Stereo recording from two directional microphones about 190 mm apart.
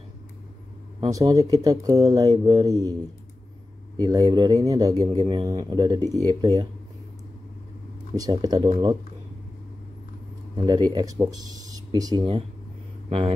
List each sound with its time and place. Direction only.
1.1 s speech: 20° right (ahead or behind)
8.1 s speech: 20° right (ahead or behind)
10.5 s speech: 20° right (ahead or behind)